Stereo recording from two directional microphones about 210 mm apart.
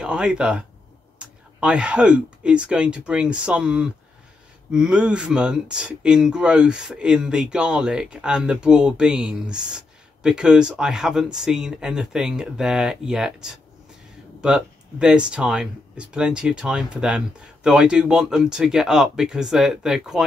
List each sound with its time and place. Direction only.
0.0 s speech: 5° right (ahead or behind)